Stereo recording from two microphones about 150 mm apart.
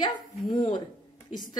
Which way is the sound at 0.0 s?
30° left (ahead or behind).